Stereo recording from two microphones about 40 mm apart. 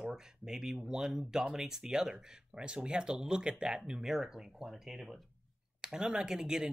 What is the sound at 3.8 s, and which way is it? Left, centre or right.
Speech, centre.